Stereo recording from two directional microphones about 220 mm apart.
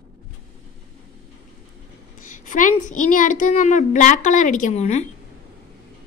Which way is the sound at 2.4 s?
35° left (ahead or behind).